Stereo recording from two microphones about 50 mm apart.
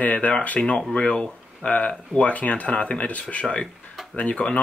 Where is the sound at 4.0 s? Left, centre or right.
Centre.